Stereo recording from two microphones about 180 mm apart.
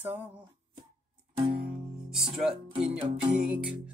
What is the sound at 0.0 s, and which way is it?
Music, 10° right (ahead or behind).